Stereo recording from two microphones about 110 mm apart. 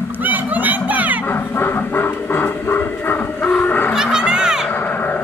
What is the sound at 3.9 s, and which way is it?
Music, 5° right (ahead or behind).